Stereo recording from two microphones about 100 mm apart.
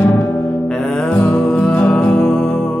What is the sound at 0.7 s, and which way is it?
Music, 5° left (ahead or behind).